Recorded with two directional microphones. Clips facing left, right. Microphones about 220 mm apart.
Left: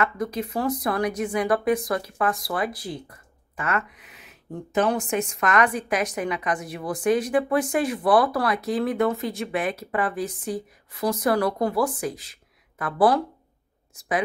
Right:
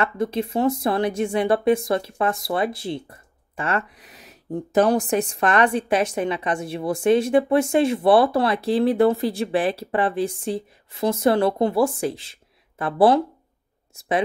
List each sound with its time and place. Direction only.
0.0 s a woman's voice: 25° right (ahead or behind)